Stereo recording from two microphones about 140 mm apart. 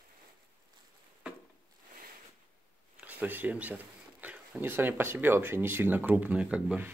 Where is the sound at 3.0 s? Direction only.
10° right (ahead or behind).